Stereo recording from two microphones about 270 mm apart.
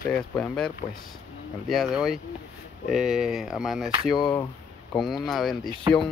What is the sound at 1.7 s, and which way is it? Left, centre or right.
Speech, centre.